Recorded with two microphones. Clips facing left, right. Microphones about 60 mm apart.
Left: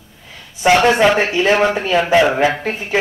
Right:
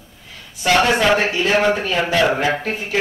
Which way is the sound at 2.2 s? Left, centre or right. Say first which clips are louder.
Left 3 dB; centre.